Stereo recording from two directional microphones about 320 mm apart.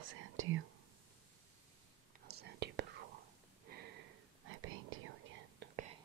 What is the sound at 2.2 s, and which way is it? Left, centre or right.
Whispering, right.